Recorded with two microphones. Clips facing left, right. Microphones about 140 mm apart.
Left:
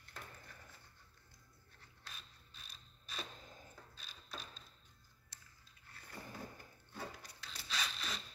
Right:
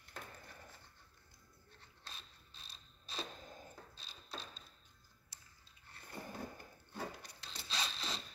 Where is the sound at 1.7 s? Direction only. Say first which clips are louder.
Right 1 dB; 30° right (ahead or behind).